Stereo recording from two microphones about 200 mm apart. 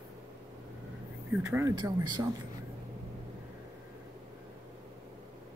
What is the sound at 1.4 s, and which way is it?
Speech, 15° right (ahead or behind).